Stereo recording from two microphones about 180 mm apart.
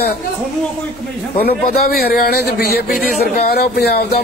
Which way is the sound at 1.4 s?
55° left (ahead or behind).